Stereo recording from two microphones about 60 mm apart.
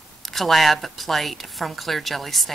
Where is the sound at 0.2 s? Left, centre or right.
Centre.